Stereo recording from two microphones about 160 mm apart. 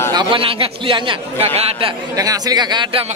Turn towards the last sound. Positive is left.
turn(degrees=-25)  # may be behind; listen again after turning